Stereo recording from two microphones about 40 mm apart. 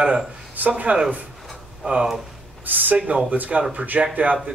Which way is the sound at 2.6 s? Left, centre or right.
Right.